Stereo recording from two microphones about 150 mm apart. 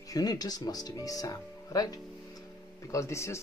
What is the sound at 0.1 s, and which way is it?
Speech, 25° left (ahead or behind).